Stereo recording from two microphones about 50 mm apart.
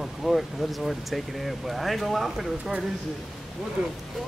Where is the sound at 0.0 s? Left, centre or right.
Centre.